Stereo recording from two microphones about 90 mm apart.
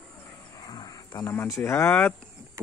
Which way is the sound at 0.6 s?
50° left (ahead or behind).